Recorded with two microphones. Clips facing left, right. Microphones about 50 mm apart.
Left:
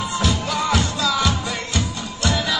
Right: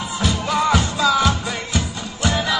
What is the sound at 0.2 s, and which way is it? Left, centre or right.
Music, right.